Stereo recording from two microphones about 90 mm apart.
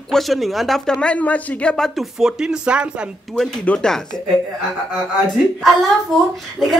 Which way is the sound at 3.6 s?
10° left (ahead or behind).